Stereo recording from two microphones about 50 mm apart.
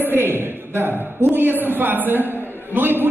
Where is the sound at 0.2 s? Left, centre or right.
Right.